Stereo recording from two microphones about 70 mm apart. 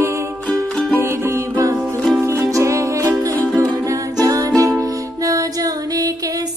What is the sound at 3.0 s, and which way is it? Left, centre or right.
Music, right.